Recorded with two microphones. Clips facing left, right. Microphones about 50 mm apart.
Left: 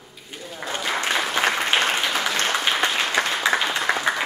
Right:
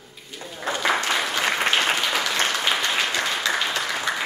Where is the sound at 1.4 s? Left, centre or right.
Left.